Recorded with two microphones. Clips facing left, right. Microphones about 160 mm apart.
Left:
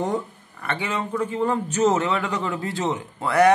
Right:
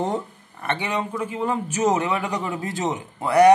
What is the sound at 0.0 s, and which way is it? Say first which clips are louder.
Speech: even; 25° right (ahead or behind).